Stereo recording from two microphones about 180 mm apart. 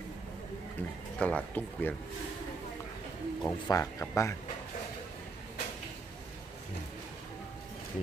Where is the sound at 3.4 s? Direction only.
20° left (ahead or behind).